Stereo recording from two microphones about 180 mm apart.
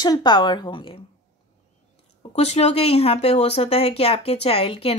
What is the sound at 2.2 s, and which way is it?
Speech, 35° left (ahead or behind).